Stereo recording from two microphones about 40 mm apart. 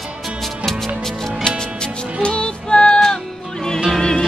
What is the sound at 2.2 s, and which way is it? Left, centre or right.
Music, left.